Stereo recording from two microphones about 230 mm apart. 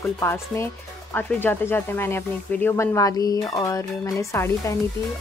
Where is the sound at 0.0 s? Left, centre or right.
Centre.